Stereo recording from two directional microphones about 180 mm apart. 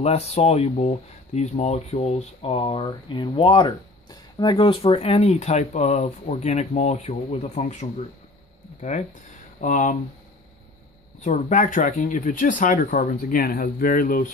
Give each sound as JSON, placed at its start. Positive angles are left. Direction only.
{"t": 0.0, "sound": "speech", "side_deg": 35}
{"t": 9.6, "sound": "speech", "side_deg": 45}
{"t": 11.1, "sound": "speech", "side_deg": 40}